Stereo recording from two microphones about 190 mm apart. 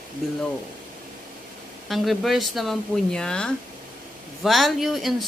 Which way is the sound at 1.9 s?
Centre (ahead or behind).